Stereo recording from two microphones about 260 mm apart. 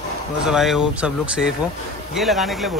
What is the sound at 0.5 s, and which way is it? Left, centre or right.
Speech, centre.